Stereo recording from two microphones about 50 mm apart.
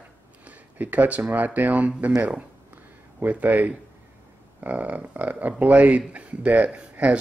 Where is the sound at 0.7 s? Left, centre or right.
Right.